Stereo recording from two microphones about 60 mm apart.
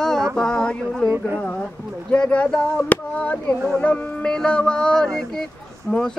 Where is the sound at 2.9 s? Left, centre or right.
Left.